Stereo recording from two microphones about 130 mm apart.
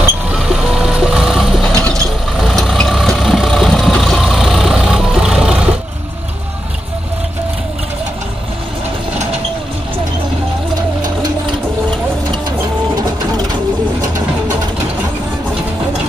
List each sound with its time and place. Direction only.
0.3 s vehicle: 5° right (ahead or behind)
1.8 s mechanisms: 10° left (ahead or behind)
2.3 s vehicle: centre (ahead or behind)
12.4 s printer: 30° right (ahead or behind)